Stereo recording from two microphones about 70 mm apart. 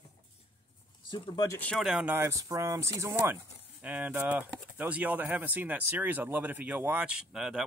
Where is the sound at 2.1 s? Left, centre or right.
Right.